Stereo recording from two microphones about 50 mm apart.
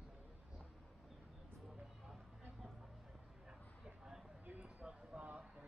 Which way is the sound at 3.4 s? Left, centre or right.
Centre.